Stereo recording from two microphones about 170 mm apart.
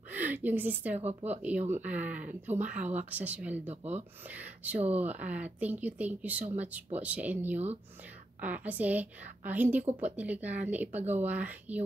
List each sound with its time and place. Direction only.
0.1 s a woman's voice: 10° right (ahead or behind)
1.0 s speech: 40° right (ahead or behind)
1.7 s speech: 10° right (ahead or behind)